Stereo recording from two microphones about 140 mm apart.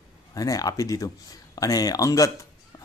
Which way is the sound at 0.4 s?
25° left (ahead or behind).